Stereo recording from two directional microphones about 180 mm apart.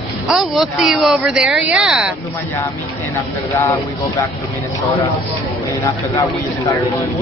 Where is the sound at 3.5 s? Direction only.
15° left (ahead or behind).